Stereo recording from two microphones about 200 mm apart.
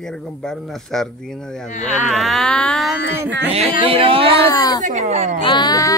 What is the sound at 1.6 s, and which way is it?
Speech, 35° left (ahead or behind).